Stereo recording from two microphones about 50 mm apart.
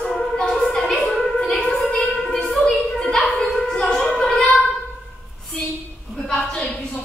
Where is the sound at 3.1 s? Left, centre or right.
Centre.